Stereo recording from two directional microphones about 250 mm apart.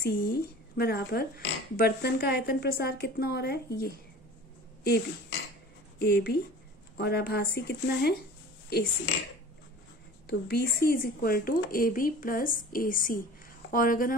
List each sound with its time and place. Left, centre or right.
0.0 s speech: left
5.9 s speech: left
10.2 s speech: left